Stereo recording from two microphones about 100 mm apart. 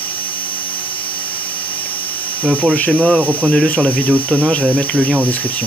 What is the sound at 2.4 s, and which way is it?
Speech, 15° right (ahead or behind).